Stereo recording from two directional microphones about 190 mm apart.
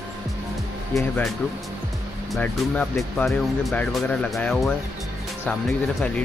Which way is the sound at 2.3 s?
5° left (ahead or behind).